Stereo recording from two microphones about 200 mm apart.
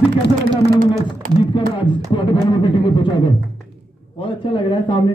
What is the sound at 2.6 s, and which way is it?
Speech, 25° left (ahead or behind).